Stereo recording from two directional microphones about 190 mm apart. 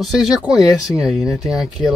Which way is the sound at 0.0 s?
Centre (ahead or behind).